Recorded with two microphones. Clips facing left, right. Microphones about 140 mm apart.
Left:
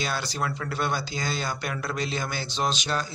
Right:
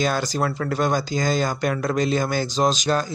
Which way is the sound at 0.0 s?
45° right (ahead or behind).